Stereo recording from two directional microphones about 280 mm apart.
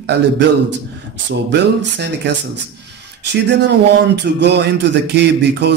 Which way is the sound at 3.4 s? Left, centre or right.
Right.